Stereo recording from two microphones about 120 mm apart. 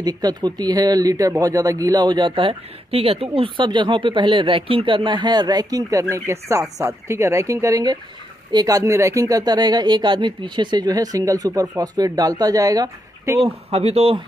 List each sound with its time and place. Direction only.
0.0 s speech: 35° right (ahead or behind)
13.4 s speech: 55° right (ahead or behind)